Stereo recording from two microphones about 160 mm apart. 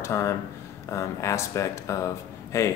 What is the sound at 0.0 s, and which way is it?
Speech, 15° left (ahead or behind).